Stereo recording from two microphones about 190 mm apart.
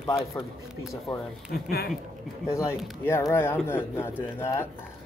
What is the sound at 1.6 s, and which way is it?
Speech, 55° left (ahead or behind).